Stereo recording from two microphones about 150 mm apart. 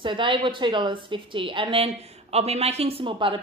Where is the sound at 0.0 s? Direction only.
35° right (ahead or behind).